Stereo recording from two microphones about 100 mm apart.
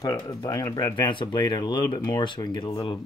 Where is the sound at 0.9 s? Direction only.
50° left (ahead or behind).